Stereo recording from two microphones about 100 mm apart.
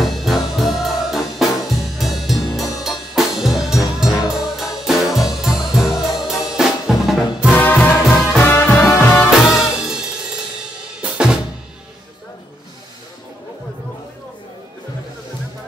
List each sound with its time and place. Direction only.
0.0 s music: centre (ahead or behind)
7.5 s music: 20° left (ahead or behind)
9.4 s music: 5° right (ahead or behind)
10.8 s drum kit: 10° right (ahead or behind)